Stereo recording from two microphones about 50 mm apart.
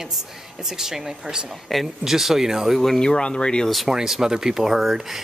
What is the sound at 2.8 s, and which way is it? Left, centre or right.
Speech, centre.